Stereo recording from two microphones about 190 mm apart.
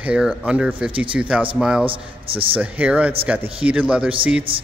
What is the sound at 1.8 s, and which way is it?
Speech, 30° right (ahead or behind).